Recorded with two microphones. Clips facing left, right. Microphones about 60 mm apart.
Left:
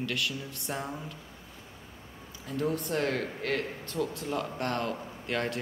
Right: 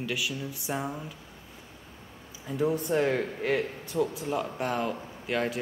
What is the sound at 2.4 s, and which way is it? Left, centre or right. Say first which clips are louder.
Speech: right 3 dB; centre.